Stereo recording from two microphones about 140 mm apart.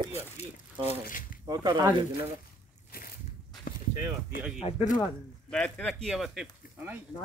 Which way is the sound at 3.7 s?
90° left.